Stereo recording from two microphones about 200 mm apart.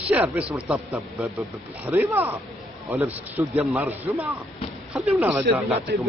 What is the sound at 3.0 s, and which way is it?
Speech, 30° right (ahead or behind).